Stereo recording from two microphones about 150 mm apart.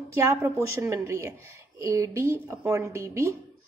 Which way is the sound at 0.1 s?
20° right (ahead or behind).